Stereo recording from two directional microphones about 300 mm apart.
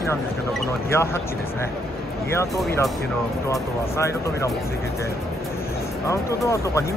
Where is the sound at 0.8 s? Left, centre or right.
Centre.